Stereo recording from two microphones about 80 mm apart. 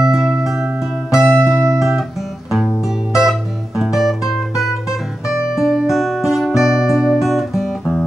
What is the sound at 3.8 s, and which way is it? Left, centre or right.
Music, centre.